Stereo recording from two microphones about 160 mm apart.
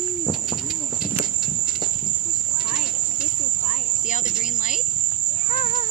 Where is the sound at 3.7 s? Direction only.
50° left (ahead or behind).